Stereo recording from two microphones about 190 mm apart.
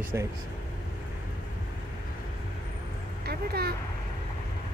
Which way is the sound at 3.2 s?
55° right (ahead or behind).